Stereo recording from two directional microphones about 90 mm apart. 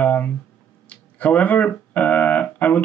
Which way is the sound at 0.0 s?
15° left (ahead or behind).